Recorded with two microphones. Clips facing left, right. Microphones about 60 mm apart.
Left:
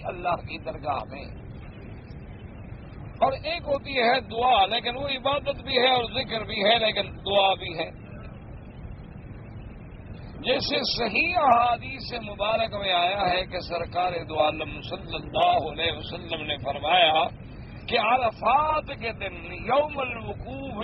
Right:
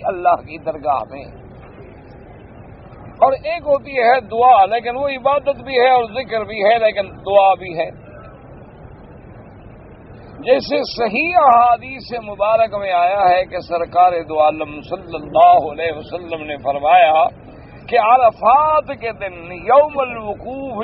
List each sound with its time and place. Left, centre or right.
0.0 s a man's voice: right
3.3 s a man's voice: right
10.3 s a man's voice: right